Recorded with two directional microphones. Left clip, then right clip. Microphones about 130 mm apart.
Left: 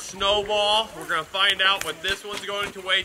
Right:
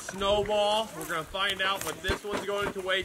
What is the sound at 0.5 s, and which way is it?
Speech, centre (ahead or behind).